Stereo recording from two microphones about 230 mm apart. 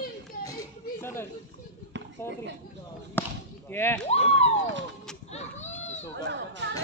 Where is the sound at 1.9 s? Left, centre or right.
Right.